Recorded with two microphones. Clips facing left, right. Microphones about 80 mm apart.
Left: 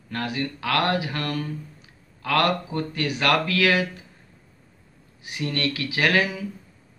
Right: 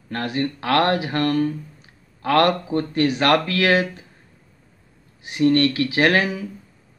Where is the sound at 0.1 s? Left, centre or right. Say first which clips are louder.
Right 4 dB; right.